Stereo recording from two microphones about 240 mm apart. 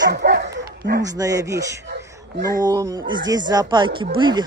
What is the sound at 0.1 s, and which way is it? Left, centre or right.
Dog, right.